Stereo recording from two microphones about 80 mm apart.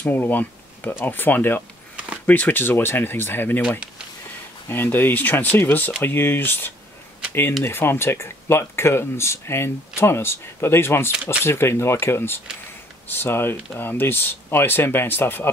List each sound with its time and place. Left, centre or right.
0.0 s speech: left
4.6 s speech: left